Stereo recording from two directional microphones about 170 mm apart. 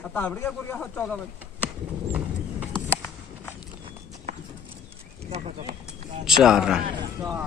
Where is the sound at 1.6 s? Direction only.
10° right (ahead or behind).